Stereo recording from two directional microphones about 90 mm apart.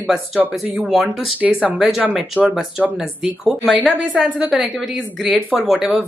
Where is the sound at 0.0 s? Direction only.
5° right (ahead or behind).